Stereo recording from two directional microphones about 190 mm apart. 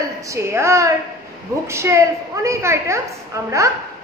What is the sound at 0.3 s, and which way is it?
A woman's voice, 15° right (ahead or behind).